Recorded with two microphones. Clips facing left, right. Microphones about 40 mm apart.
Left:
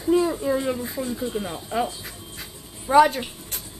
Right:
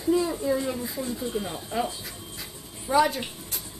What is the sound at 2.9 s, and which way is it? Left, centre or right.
Speech, left.